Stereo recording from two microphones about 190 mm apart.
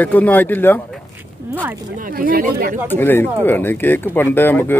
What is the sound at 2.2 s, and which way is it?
Speech, 50° right (ahead or behind).